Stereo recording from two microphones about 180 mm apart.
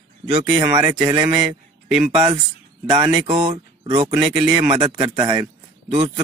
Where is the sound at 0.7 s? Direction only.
10° right (ahead or behind).